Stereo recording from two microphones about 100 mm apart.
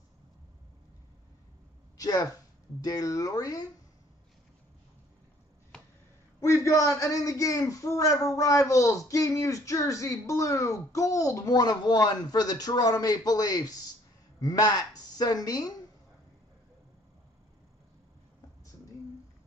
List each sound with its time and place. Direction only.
2.0 s a man's voice: 40° left (ahead or behind)
6.4 s a man's voice: 30° left (ahead or behind)